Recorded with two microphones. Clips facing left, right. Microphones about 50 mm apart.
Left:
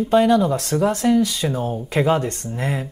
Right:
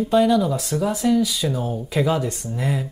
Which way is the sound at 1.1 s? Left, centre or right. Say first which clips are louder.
Left 2 dB; left.